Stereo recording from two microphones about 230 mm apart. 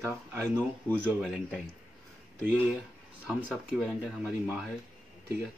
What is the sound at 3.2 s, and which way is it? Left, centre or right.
Speech, centre.